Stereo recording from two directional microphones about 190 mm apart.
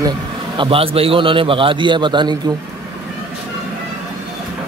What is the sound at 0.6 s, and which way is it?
A man's voice, 30° right (ahead or behind).